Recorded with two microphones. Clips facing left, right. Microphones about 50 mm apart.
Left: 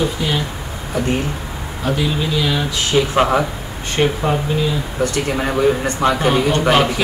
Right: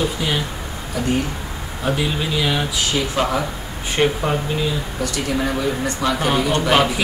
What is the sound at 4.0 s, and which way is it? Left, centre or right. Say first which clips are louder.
Speech: left 2 dB; centre.